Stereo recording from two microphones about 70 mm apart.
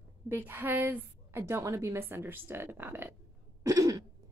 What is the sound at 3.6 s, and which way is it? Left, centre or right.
Throat clearing, right.